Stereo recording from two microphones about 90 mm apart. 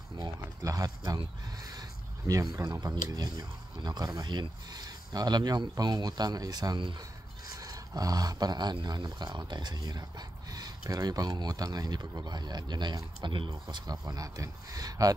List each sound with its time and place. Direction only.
0.2 s speech: 40° right (ahead or behind); by 13.9 s 60° right (ahead or behind)
14.0 s speech: 40° right (ahead or behind)